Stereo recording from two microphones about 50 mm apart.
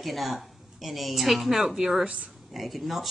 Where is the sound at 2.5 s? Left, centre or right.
Centre.